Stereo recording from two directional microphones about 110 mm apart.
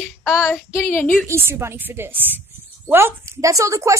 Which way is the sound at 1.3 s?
25° right (ahead or behind).